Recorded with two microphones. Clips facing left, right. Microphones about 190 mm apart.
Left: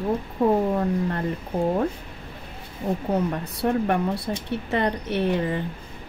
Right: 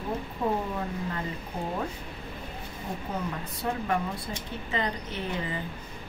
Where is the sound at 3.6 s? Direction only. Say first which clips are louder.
Left 7 dB; 70° left (ahead or behind).